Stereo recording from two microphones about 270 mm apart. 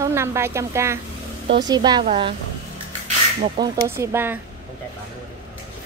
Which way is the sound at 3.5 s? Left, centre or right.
Centre.